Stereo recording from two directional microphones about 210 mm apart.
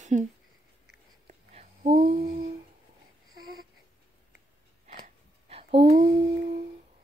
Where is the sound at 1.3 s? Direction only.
30° right (ahead or behind).